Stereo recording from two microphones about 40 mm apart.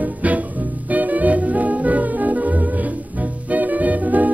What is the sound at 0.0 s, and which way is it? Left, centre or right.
Music, right.